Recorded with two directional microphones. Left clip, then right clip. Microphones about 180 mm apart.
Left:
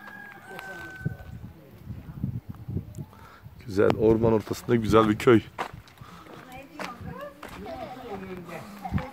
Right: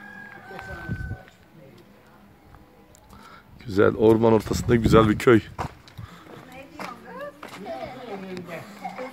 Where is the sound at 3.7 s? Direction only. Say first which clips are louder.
Right 3 dB; 15° right (ahead or behind); by 6.9 s 10° left (ahead or behind).